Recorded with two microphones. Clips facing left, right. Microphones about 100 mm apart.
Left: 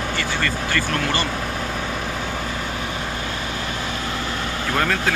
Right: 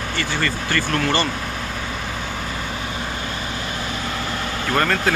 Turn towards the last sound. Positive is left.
turn(degrees=5)  # may be behind; listen again after turning